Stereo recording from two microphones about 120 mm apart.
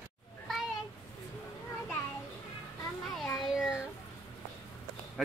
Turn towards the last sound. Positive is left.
turn(degrees=0)  # may be behind; listen again after turning